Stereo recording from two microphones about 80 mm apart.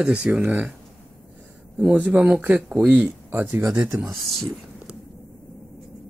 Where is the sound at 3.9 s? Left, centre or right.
Centre.